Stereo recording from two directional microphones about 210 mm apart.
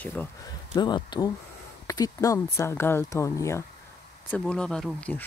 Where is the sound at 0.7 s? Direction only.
20° left (ahead or behind).